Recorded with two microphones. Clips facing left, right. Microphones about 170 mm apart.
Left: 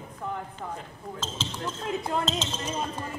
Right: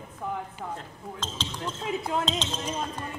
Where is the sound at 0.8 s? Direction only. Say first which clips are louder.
Left 1 dB; 5° left (ahead or behind).